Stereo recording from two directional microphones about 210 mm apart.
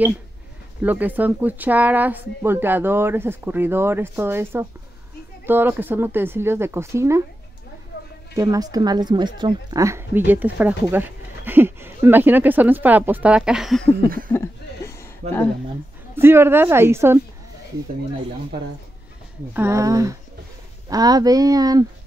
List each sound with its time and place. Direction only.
0.8 s a woman's voice: 10° right (ahead or behind)
7.9 s a sound: 50° left (ahead or behind)
8.4 s a woman's voice: 15° right (ahead or behind); by 13.9 s centre (ahead or behind)
14.0 s speech: 45° right (ahead or behind)
14.3 s a sound: 10° left (ahead or behind)
16.2 s a woman's voice: 10° right (ahead or behind)
19.5 s a woman's voice: 15° right (ahead or behind)